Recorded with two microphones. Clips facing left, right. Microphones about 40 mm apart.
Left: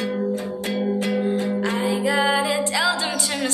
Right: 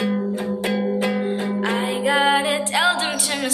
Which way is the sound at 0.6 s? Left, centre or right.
Right.